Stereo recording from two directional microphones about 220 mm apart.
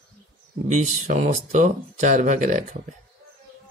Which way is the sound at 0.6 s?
35° right (ahead or behind).